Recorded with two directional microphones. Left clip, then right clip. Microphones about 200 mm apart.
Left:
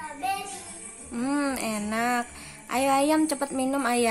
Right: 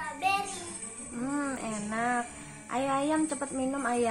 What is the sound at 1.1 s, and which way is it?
Speech, 35° left (ahead or behind).